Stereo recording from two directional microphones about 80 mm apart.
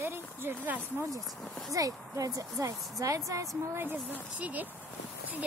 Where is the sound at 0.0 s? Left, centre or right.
Right.